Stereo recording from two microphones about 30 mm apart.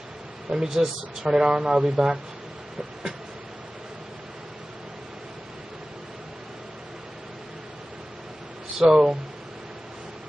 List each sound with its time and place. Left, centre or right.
0.6 s speech: centre
1.3 s speech: right
8.7 s speech: right